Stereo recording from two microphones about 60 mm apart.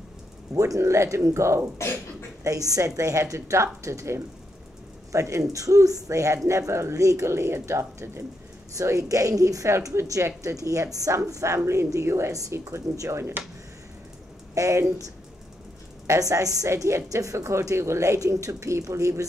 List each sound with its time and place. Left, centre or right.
0.6 s a woman's voice: right
2.4 s a woman's voice: right
8.7 s a woman's voice: right
12.3 s speech: right
12.7 s a woman's voice: right
14.5 s a woman's voice: right
16.1 s a woman's voice: right